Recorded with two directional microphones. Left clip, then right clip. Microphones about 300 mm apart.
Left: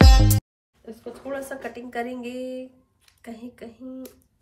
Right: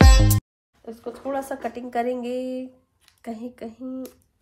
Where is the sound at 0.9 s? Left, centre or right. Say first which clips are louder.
Right 4 dB; right.